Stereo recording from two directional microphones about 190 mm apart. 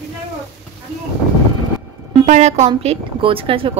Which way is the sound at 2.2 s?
40° right (ahead or behind).